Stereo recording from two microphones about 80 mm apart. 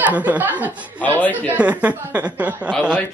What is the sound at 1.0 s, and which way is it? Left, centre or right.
Speech, left.